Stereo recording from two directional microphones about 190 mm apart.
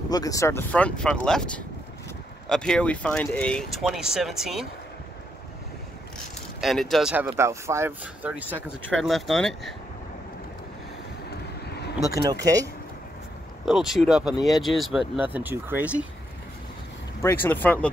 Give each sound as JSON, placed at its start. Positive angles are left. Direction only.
{"t": 0.1, "sound": "speech", "side_deg": 20}
{"t": 6.6, "sound": "speech", "side_deg": 0}
{"t": 12.0, "sound": "speech", "side_deg": -15}
{"t": 13.7, "sound": "speech", "side_deg": 0}
{"t": 17.2, "sound": "speech", "side_deg": 10}